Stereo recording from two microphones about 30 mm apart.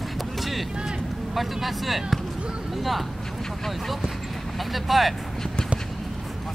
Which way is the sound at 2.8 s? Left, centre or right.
Centre.